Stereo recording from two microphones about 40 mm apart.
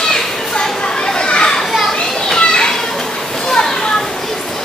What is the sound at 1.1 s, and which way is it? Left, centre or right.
Children playing, left.